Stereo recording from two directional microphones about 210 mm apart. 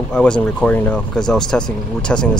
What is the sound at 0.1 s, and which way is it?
Speech, 5° left (ahead or behind).